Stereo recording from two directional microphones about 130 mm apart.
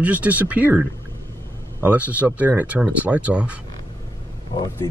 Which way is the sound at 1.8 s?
10° right (ahead or behind).